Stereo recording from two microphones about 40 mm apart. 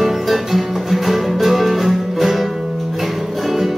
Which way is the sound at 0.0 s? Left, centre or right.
Centre.